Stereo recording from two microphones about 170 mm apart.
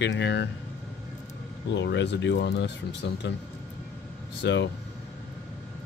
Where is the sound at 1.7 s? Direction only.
90° left.